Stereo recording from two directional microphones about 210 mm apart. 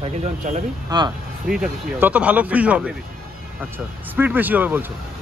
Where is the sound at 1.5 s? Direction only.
5° right (ahead or behind).